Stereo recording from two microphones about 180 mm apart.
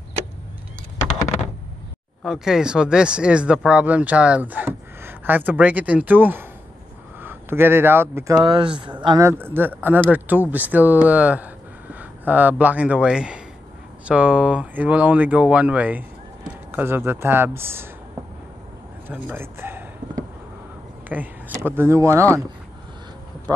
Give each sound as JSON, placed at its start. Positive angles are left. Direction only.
{"t": 2.2, "sound": "speech", "side_deg": -5}
{"t": 8.5, "sound": "speech", "side_deg": -25}
{"t": 19.0, "sound": "a sound", "side_deg": -10}
{"t": 21.1, "sound": "speech", "side_deg": -10}